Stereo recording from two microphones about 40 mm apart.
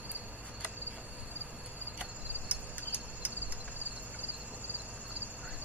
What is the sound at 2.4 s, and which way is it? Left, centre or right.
Cricket, right.